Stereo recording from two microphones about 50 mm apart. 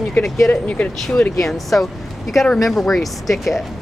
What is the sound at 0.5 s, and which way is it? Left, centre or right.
Speech, left.